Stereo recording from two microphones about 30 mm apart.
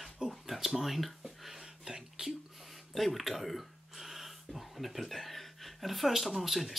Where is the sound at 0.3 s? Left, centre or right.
Centre.